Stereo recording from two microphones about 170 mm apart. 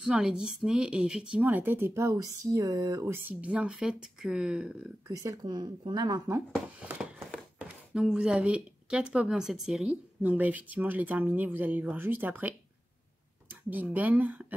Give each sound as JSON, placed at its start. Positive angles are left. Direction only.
{"t": 0.0, "sound": "speech", "side_deg": -5}
{"t": 5.0, "sound": "speech", "side_deg": -20}
{"t": 6.5, "sound": "speech", "side_deg": -5}